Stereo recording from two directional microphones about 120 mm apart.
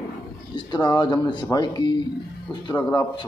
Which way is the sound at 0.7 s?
40° left (ahead or behind).